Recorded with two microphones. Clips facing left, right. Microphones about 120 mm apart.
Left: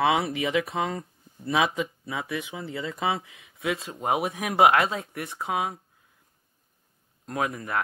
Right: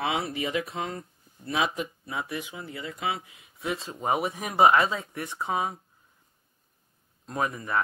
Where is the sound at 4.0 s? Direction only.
55° left (ahead or behind).